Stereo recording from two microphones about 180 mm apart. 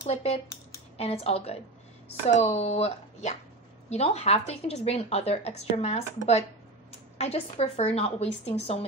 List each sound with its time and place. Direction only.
0.0 s a woman's voice: 35° left (ahead or behind)